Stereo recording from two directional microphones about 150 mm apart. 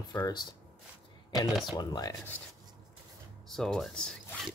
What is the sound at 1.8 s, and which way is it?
Speech, 25° left (ahead or behind).